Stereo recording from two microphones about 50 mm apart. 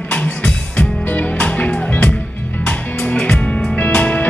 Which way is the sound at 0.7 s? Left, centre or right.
Left.